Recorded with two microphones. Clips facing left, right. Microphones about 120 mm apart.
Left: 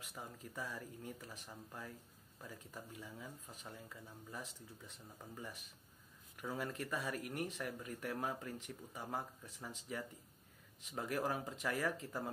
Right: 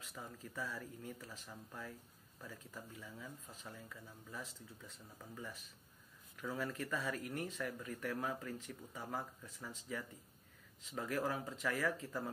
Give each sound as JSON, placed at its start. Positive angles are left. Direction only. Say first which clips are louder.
{"t": 0.0, "sound": "speech", "louder": "even", "side_deg": 20}